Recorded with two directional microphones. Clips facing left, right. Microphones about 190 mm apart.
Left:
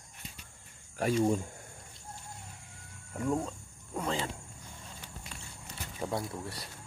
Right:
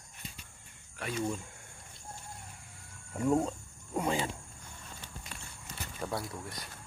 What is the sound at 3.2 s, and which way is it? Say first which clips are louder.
Speech: right 3 dB; 20° right (ahead or behind).